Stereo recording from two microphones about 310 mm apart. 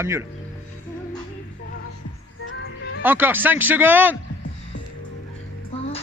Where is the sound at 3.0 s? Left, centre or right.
Centre.